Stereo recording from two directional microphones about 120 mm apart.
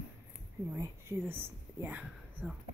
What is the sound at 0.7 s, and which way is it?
Speech, 20° right (ahead or behind).